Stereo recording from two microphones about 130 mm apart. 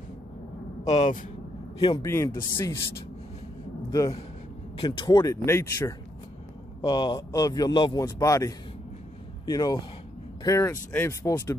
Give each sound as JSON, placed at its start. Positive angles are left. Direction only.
{"t": 0.8, "sound": "speech", "side_deg": 65}
{"t": 1.8, "sound": "speech", "side_deg": 30}
{"t": 2.0, "sound": "speech", "side_deg": 20}
{"t": 4.7, "sound": "speech", "side_deg": 35}
{"t": 6.8, "sound": "speech", "side_deg": 35}